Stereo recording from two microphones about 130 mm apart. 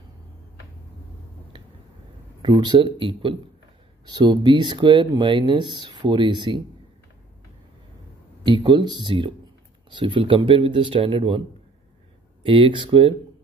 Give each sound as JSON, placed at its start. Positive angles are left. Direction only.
{"t": 2.4, "sound": "speech", "side_deg": -35}
{"t": 8.5, "sound": "speech", "side_deg": -35}
{"t": 12.4, "sound": "speech", "side_deg": -40}